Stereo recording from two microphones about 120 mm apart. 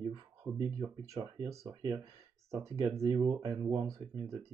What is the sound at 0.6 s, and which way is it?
Speech, 25° right (ahead or behind).